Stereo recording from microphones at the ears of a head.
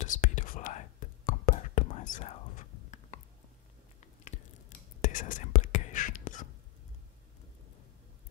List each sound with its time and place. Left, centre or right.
0.0 s whispering: left